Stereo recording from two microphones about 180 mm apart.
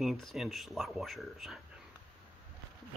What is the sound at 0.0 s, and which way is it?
Speech, centre (ahead or behind).